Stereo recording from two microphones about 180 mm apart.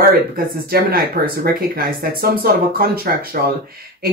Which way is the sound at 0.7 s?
60° right (ahead or behind).